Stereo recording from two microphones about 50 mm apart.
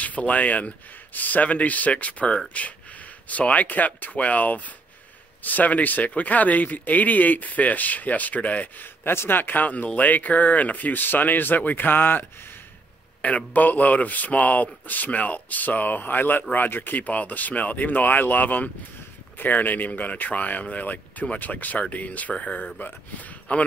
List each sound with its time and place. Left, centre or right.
0.0 s speech: left
9.0 s speech: left
13.5 s speech: left